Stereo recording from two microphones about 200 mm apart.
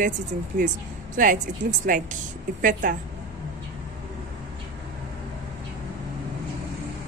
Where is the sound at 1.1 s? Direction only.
40° right (ahead or behind).